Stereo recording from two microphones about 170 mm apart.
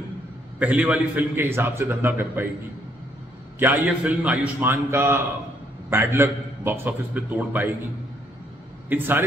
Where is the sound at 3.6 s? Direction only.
10° right (ahead or behind).